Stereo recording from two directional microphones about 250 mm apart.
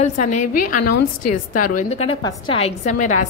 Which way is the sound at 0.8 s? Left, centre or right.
Left.